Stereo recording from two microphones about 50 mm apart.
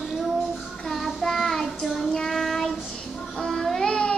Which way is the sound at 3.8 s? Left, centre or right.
Centre.